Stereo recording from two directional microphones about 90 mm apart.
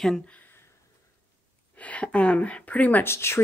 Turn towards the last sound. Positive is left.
turn(degrees=30)  # may be behind; listen again after turning